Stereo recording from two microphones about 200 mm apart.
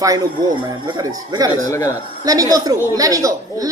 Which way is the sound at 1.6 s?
15° left (ahead or behind).